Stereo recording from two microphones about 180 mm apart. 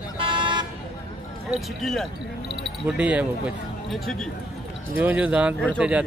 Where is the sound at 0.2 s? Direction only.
25° right (ahead or behind).